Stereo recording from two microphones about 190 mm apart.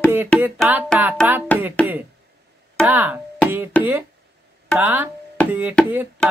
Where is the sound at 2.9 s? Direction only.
10° right (ahead or behind).